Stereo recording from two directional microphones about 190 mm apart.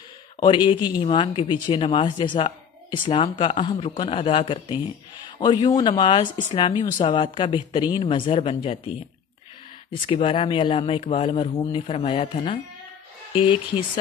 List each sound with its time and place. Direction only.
0.4 s speech: 25° left (ahead or behind)
10.0 s speech: 30° left (ahead or behind)